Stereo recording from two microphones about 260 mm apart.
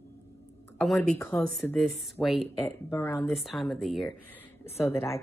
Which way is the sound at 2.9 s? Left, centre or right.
Centre.